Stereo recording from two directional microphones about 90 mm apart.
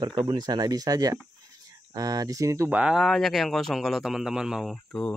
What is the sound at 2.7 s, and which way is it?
Speech, 15° right (ahead or behind).